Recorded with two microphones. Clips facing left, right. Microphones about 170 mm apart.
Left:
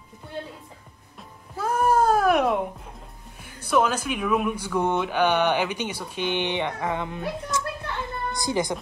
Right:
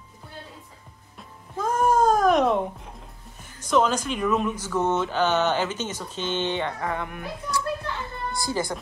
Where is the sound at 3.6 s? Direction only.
10° left (ahead or behind).